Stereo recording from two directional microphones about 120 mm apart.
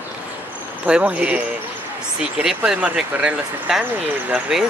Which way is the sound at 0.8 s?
10° right (ahead or behind).